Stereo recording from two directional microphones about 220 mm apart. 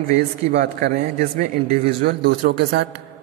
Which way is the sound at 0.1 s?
45° right (ahead or behind).